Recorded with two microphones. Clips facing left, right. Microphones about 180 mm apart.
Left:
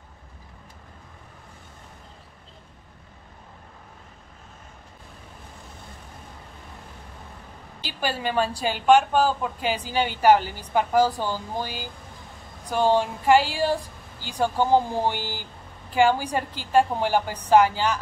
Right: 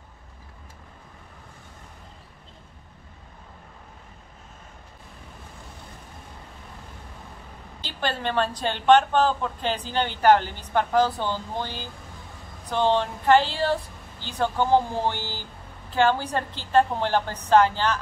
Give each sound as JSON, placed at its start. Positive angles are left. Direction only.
{"t": 7.8, "sound": "a woman's voice", "side_deg": 10}